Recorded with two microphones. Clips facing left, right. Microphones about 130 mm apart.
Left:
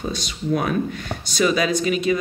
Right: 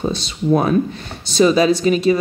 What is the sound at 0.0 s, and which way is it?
Speech, 30° right (ahead or behind).